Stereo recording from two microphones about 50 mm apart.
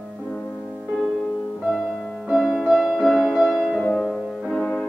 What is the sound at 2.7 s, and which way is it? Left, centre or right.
Music, centre.